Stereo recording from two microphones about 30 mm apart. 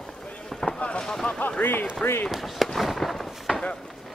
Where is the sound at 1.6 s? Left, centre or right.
Left.